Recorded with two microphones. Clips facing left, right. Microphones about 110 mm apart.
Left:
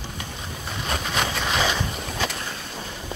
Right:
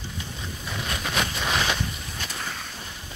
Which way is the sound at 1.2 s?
90° left.